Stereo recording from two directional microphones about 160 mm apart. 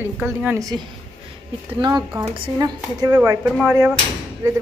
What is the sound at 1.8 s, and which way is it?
Speech, 25° right (ahead or behind).